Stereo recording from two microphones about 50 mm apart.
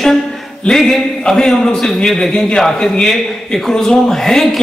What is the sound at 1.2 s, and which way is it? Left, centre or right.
A man's voice, centre.